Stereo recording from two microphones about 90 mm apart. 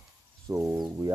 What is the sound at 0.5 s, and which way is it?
Speech, 30° right (ahead or behind).